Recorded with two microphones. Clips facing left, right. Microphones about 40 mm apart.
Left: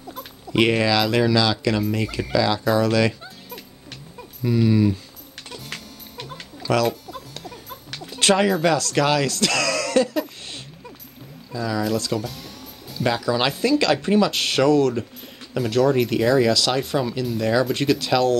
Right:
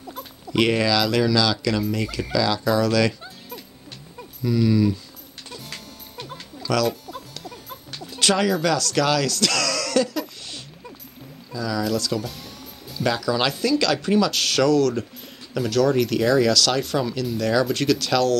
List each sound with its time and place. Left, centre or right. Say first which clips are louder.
0.5 s speech: left 1 dB; centre
4.4 s speech: left 1 dB; left
5.5 s music: left 2 dB; left
8.2 s music: left 3 dB; left
8.6 s speech: left 2 dB; left
12.2 s music: left 1 dB; centre
13.0 s speech: left 1 dB; centre
15.6 s speech: left 1 dB; centre